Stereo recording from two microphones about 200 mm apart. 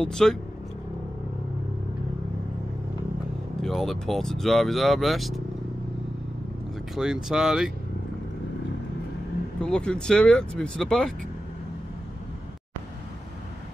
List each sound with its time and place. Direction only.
0.0 s speech: centre (ahead or behind)
3.6 s speech: centre (ahead or behind)
7.0 s speech: 5° right (ahead or behind)
9.6 s speech: 5° left (ahead or behind)